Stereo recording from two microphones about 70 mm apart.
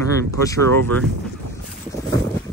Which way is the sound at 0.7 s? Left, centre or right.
Left.